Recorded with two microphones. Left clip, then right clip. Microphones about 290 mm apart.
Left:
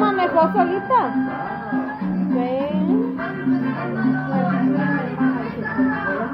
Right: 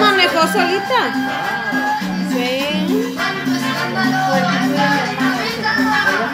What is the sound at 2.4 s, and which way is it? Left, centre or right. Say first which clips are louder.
Music: right 5 dB; right.